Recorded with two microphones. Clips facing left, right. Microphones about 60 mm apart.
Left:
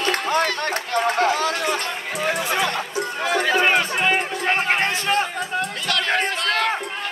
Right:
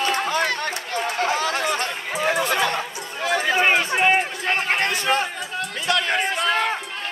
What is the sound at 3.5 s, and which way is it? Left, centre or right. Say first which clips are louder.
Run: even; centre.